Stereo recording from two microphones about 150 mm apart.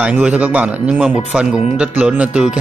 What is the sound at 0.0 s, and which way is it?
Speech, 10° right (ahead or behind).